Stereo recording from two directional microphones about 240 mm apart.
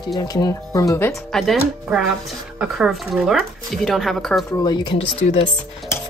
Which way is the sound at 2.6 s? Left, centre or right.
Centre.